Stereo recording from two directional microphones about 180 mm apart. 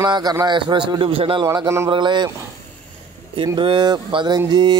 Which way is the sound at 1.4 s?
20° right (ahead or behind).